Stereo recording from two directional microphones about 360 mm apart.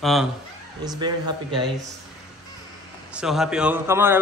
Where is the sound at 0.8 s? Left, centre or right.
Centre.